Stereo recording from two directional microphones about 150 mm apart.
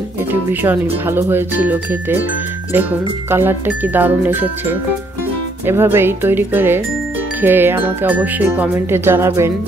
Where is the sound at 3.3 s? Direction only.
15° right (ahead or behind).